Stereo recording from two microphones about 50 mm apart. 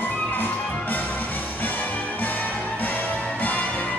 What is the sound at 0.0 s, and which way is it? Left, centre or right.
Music, left.